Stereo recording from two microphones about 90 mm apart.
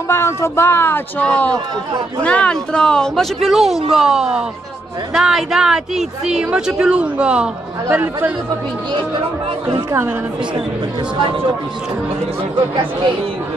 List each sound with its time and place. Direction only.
0.1 s speech: 30° left (ahead or behind)
1.2 s speech: 15° left (ahead or behind); by 7.4 s 10° right (ahead or behind)
7.9 s speech: 25° right (ahead or behind)